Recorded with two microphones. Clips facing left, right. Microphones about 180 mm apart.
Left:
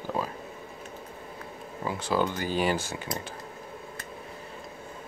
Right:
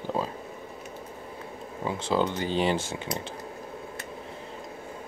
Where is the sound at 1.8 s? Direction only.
20° right (ahead or behind).